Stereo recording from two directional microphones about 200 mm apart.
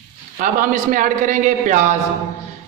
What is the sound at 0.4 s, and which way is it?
A man's voice, 40° right (ahead or behind).